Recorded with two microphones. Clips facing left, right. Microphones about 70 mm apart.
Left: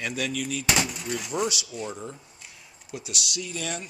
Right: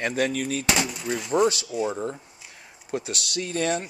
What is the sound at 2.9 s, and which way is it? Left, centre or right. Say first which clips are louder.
Speech: right 6 dB; right.